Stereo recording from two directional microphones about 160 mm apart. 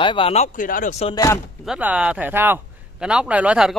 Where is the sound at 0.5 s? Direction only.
60° left (ahead or behind).